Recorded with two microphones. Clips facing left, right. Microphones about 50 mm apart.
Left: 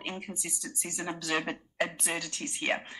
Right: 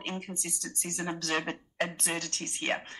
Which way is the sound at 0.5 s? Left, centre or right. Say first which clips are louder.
Even; right.